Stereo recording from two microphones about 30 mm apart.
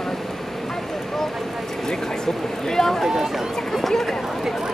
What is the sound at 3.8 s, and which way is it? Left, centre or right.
Run, centre.